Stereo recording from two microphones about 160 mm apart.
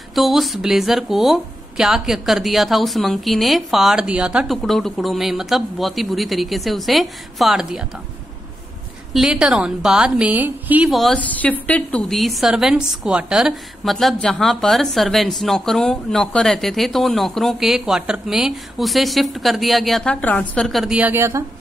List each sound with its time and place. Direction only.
0.1 s a woman's voice: centre (ahead or behind)
9.1 s a woman's voice: 5° right (ahead or behind)